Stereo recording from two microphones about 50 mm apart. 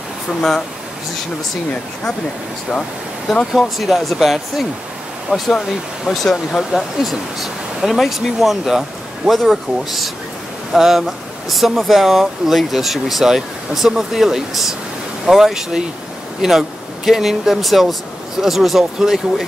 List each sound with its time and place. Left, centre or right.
0.4 s speech: centre
3.5 s speech: centre
5.3 s speech: right
6.1 s speech: centre